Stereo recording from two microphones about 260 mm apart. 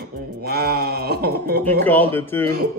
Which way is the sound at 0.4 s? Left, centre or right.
Right.